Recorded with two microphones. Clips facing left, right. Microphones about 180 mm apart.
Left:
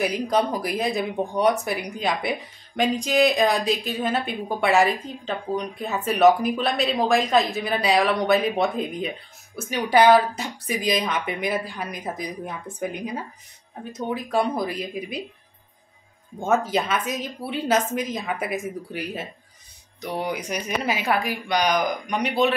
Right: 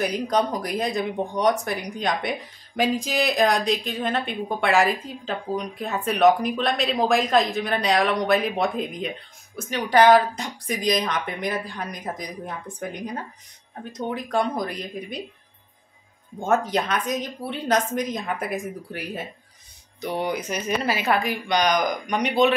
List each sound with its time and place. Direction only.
0.0 s speech: 5° left (ahead or behind)
16.3 s speech: 5° left (ahead or behind)